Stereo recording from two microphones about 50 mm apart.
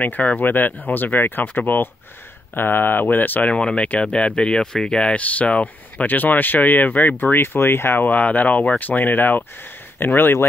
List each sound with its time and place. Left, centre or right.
0.0 s speech: left
3.5 s speech: left